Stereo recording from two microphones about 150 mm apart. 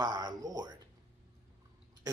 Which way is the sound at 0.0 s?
25° right (ahead or behind).